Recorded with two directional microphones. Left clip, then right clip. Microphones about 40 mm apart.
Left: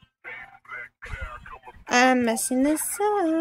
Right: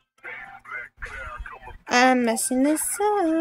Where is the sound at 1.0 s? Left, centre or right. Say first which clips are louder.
Right 3 dB; right.